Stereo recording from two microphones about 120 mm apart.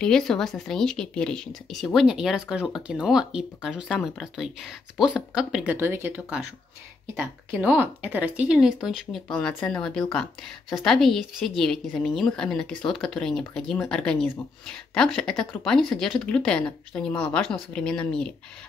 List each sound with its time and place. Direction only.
0.0 s speech: 5° left (ahead or behind)
9.5 s speech: 15° left (ahead or behind)
9.8 s speech: 5° left (ahead or behind)